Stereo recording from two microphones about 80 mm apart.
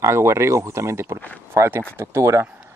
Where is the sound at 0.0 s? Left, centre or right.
Right.